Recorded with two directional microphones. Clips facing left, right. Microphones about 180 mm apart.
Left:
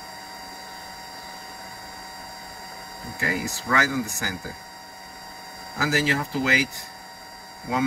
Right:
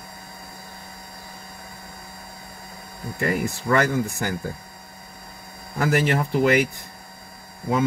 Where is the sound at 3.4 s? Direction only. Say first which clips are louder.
Right 4 dB; 60° right (ahead or behind).